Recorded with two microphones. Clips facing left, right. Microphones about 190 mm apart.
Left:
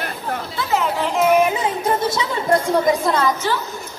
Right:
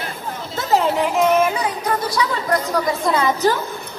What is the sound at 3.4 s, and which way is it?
Speech, 40° right (ahead or behind).